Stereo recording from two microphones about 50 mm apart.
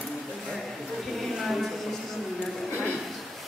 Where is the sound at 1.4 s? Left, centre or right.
Centre.